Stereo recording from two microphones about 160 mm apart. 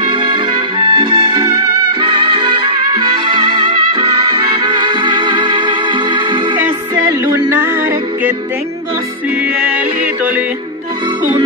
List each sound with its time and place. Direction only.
0.7 s music: 30° right (ahead or behind)